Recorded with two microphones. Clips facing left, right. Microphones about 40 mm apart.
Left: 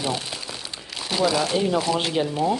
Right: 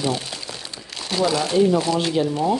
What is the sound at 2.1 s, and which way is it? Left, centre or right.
Speech, centre.